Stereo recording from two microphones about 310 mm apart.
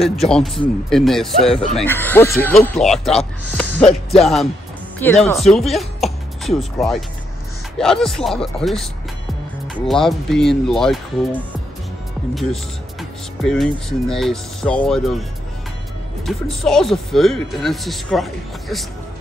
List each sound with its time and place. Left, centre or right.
0.0 s speech: centre
9.8 s speech: centre
13.4 s speech: centre
16.3 s speech: centre